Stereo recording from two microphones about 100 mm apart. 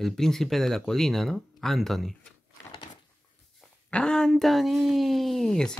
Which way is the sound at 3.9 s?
10° left (ahead or behind).